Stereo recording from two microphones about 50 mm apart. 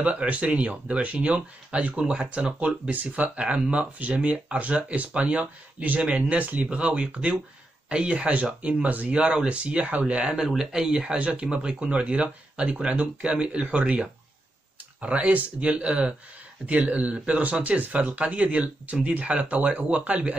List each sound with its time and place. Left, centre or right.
0.0 s speech: right
8.8 s speech: right
9.1 s speech: right
11.1 s speech: right